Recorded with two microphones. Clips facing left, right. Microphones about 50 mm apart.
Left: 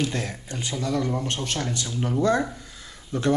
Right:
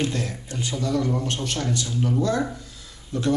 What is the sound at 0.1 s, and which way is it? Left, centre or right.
A man's voice, centre.